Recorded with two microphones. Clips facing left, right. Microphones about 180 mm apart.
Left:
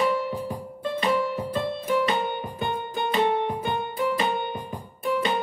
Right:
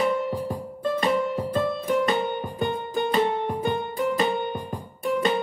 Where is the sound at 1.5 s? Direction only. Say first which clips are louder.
Right 2 dB; 45° right (ahead or behind).